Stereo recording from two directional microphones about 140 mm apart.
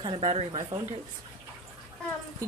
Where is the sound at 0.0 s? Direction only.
45° right (ahead or behind).